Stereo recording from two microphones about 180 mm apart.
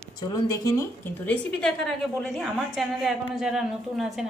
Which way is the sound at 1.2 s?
5° left (ahead or behind).